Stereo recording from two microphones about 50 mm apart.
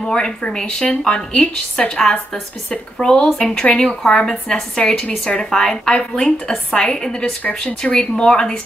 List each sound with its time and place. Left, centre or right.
0.0 s a woman's voice: centre